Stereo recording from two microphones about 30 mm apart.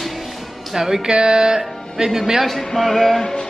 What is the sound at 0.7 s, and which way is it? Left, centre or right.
Speech, centre.